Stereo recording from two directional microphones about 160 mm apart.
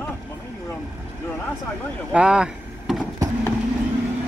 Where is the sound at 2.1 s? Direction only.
5° right (ahead or behind).